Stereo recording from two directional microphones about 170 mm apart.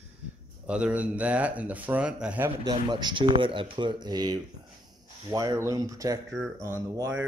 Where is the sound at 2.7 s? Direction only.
25° right (ahead or behind).